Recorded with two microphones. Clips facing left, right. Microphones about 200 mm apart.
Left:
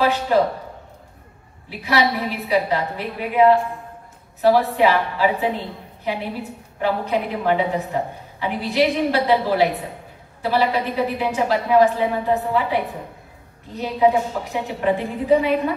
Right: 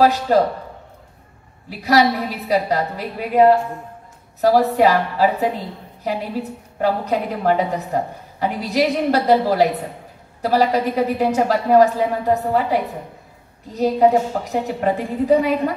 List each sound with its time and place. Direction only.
0.0 s a woman's voice: 40° right (ahead or behind)
1.7 s a woman's voice: 40° right (ahead or behind)
6.8 s a woman's voice: 40° right (ahead or behind)